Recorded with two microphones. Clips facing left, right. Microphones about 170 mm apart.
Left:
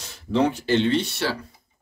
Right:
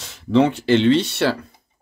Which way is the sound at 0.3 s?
90° right.